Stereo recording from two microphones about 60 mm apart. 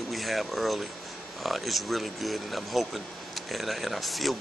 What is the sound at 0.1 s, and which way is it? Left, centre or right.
Speech, centre.